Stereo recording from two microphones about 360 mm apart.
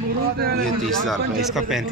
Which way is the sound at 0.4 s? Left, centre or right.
Right.